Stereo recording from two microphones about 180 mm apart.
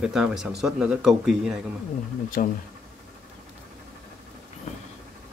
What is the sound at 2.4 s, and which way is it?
Speech, 50° left (ahead or behind).